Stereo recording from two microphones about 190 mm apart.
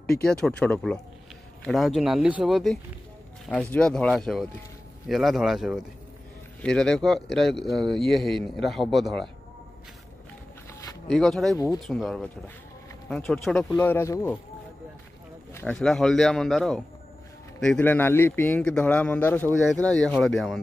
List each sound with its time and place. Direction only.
0.0 s speech: 5° left (ahead or behind)
11.1 s speech: centre (ahead or behind)
11.5 s a man's voice: 20° left (ahead or behind)
11.8 s a man's voice: centre (ahead or behind)
15.5 s a man's voice: 5° left (ahead or behind)